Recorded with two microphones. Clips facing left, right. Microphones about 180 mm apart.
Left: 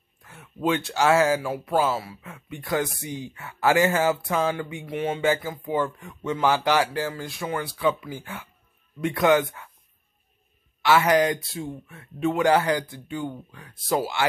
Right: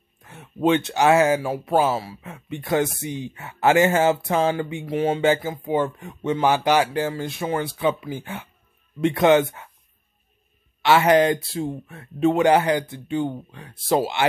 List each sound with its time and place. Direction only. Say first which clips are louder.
0.2 s speech: right 5 dB; 20° right (ahead or behind)
10.8 s speech: right 3 dB; 25° right (ahead or behind)
12.4 s speech: right 3 dB; 20° right (ahead or behind)